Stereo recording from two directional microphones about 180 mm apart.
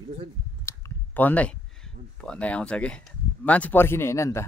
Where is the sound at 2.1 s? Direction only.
5° left (ahead or behind).